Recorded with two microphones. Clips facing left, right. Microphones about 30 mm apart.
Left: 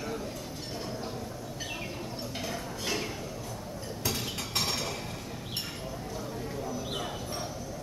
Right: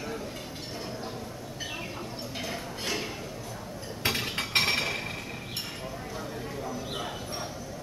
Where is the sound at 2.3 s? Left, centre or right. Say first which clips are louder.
Right 2 dB; centre.